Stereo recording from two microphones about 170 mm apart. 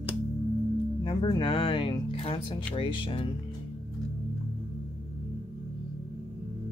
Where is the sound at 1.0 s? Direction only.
25° left (ahead or behind).